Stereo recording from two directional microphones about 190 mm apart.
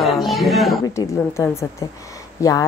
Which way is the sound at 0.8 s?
15° left (ahead or behind).